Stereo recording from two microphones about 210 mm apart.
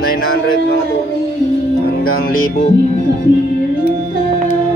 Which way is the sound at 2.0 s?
45° left (ahead or behind).